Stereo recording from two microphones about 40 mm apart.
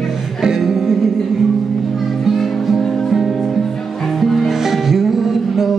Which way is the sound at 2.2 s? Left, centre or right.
Centre.